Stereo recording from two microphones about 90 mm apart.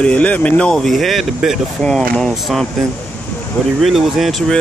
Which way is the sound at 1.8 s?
10° left (ahead or behind).